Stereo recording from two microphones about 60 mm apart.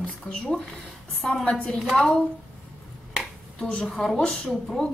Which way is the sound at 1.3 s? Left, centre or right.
Centre.